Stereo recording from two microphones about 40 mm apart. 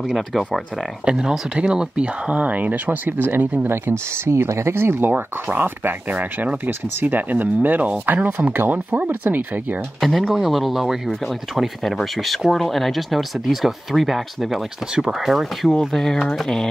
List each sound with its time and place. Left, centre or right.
0.1 s speech: centre
1.0 s speech: centre; by 3.0 s right
3.1 s speech: right
3.6 s speech: right
7.0 s speech: right
9.9 s speech: centre